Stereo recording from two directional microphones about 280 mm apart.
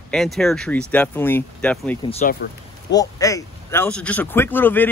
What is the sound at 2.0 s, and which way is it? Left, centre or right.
Speech, left.